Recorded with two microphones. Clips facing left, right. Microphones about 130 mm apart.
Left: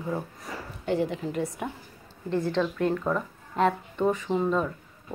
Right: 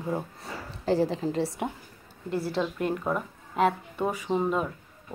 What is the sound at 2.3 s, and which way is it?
Speech, 10° right (ahead or behind).